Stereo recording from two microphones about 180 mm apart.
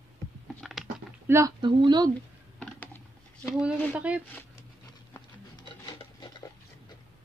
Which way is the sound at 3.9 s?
5° right (ahead or behind).